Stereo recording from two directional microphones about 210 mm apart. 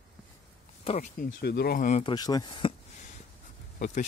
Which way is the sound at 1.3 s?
50° left (ahead or behind).